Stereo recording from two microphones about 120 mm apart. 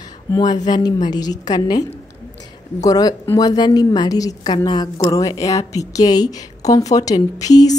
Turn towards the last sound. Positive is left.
turn(degrees=30)  # may be behind; listen again after turning